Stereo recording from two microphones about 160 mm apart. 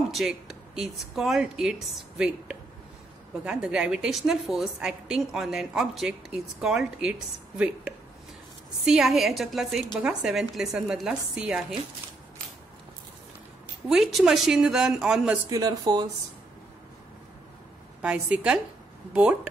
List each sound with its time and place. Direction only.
0.1 s a woman's voice: centre (ahead or behind)
13.8 s a woman's voice: centre (ahead or behind)
15.5 s speech: 25° right (ahead or behind)
18.0 s a woman's voice: 5° right (ahead or behind)